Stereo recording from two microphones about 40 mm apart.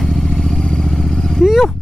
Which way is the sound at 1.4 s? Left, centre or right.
Centre.